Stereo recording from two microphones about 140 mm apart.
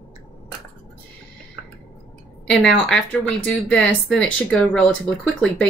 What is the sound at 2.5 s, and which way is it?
Speech, 5° left (ahead or behind).